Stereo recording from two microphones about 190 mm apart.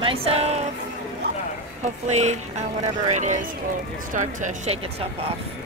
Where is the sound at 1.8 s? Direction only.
35° right (ahead or behind).